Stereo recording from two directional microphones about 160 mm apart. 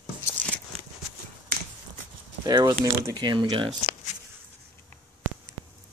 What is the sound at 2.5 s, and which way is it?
Speech, 25° right (ahead or behind).